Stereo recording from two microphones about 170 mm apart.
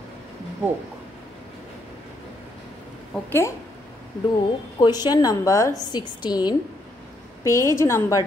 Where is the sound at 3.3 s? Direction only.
15° left (ahead or behind).